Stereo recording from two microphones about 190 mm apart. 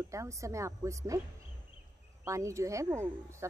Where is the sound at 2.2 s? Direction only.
15° right (ahead or behind).